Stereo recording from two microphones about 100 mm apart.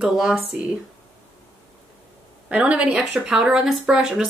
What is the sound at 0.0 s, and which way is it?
Speech, 5° right (ahead or behind).